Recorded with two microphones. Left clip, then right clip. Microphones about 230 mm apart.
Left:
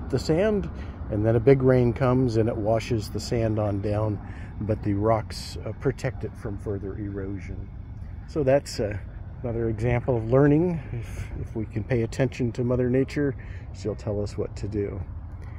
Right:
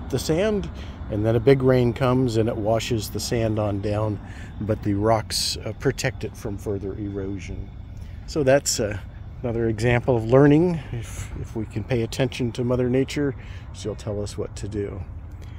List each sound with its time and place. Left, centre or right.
0.1 s speech: centre
8.3 s speech: centre
9.4 s speech: right; by 13.4 s centre
13.8 s speech: centre